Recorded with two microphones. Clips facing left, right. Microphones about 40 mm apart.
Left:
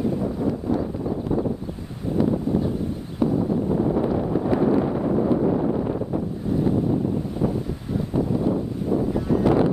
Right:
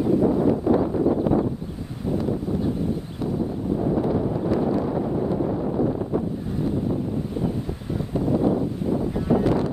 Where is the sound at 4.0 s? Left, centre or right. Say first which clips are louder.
Left 1 dB; left.